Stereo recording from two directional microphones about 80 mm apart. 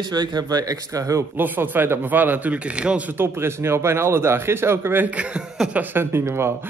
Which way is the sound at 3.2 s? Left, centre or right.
Right.